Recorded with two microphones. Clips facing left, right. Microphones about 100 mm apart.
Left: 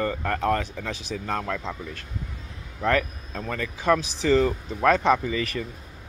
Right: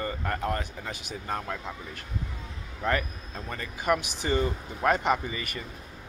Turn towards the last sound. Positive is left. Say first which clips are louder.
# left 7 dB
turn(degrees=90)